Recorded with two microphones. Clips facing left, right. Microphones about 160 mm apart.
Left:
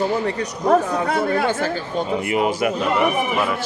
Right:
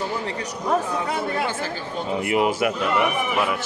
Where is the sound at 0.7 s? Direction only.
55° left (ahead or behind).